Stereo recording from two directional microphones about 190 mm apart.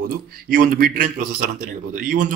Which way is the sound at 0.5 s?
45° right (ahead or behind).